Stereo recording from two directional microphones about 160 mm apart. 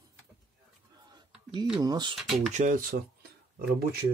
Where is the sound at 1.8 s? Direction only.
25° right (ahead or behind).